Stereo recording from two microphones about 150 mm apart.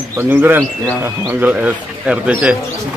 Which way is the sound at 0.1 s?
15° right (ahead or behind).